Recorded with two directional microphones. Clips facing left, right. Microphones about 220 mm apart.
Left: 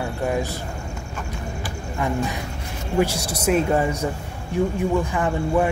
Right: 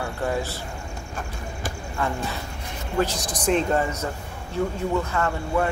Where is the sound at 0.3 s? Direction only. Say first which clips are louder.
Left 3 dB; 15° left (ahead or behind).